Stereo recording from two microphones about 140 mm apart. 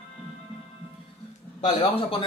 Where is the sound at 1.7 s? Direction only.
35° left (ahead or behind).